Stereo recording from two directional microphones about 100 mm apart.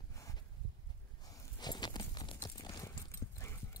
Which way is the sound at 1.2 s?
45° left (ahead or behind).